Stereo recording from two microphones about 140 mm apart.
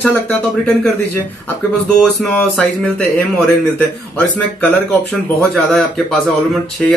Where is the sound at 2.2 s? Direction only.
5° left (ahead or behind).